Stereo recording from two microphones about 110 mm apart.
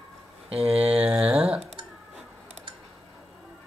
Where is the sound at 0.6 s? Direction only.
60° right (ahead or behind).